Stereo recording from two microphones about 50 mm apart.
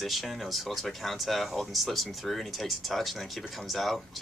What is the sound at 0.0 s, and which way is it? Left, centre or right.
Speech, centre.